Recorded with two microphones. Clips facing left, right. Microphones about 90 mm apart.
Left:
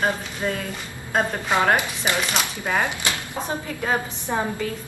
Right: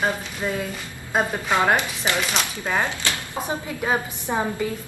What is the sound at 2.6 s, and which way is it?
Speech, 15° left (ahead or behind).